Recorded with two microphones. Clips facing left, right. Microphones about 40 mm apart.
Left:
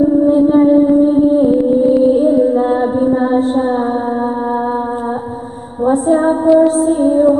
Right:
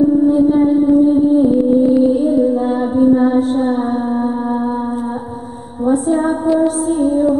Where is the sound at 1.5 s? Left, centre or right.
Centre.